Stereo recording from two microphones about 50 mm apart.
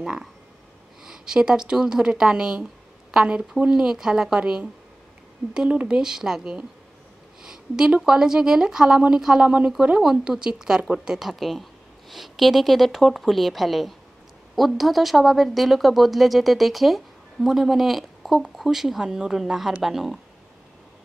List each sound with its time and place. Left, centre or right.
1.0 s speech: centre